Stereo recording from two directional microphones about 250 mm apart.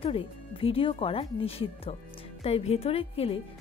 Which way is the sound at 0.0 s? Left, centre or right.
Left.